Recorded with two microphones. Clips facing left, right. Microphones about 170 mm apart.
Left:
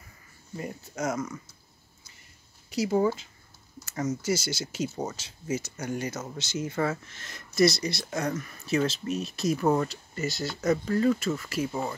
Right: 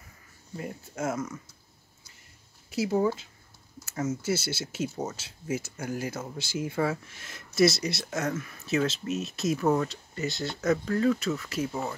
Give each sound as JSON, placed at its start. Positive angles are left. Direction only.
{"t": 0.6, "sound": "speech", "side_deg": -5}
{"t": 2.7, "sound": "speech", "side_deg": 0}
{"t": 3.8, "sound": "computer keyboard", "side_deg": -5}
{"t": 4.2, "sound": "speech", "side_deg": 90}
{"t": 4.7, "sound": "speech", "side_deg": -5}